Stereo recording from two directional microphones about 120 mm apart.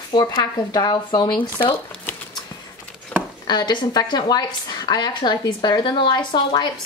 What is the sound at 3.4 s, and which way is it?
Speech, 35° left (ahead or behind).